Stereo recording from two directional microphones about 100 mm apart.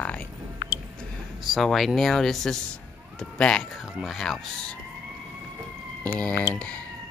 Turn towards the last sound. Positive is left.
turn(degrees=10)  # may be behind; listen again after turning